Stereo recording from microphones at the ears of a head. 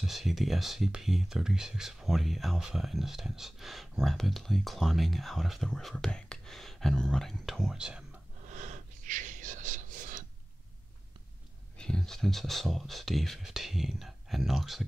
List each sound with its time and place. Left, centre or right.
0.0 s speech: centre
8.4 s gasp: right
11.8 s speech: centre